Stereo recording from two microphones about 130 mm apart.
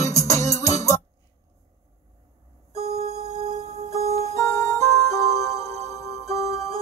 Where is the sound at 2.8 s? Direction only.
55° right (ahead or behind).